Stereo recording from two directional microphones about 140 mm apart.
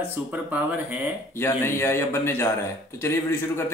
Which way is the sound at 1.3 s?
15° left (ahead or behind).